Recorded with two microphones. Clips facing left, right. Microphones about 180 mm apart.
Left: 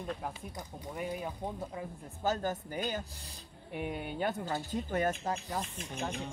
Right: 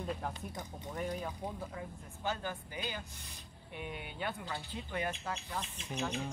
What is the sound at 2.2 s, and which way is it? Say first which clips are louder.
Speech: left 6 dB; 40° left (ahead or behind).